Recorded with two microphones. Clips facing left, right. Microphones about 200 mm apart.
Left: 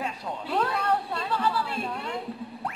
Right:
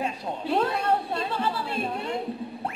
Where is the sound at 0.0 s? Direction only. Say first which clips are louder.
Right 3 dB; 25° right (ahead or behind).